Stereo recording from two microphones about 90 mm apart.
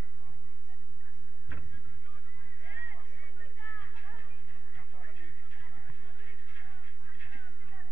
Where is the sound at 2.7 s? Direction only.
20° right (ahead or behind).